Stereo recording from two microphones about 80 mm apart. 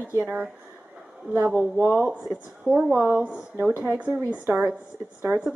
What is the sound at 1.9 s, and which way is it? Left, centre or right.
Speech, centre.